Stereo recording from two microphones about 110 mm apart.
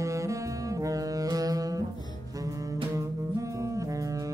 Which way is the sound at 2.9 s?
30° right (ahead or behind).